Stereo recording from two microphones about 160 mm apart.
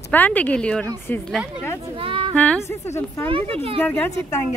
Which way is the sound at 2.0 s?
35° right (ahead or behind).